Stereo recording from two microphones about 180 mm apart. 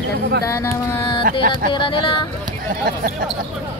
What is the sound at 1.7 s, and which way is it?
Speech, 25° left (ahead or behind).